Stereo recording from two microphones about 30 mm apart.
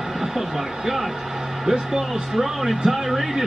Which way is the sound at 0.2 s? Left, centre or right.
Centre.